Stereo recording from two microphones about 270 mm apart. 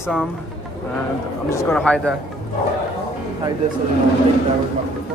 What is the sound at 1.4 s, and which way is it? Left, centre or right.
Speech, centre.